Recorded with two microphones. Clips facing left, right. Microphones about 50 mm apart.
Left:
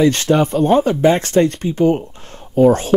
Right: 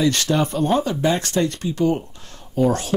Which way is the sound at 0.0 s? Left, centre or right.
Left.